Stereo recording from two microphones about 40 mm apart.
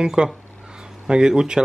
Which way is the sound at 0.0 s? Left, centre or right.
Right.